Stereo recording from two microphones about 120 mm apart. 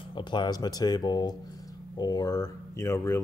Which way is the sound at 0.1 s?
40° left (ahead or behind).